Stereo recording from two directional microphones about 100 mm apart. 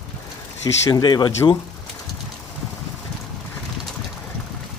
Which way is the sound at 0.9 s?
45° left (ahead or behind).